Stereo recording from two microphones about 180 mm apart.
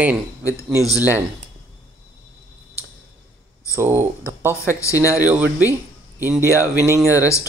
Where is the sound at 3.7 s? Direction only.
15° right (ahead or behind).